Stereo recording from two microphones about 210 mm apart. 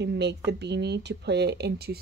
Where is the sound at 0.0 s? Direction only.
55° right (ahead or behind).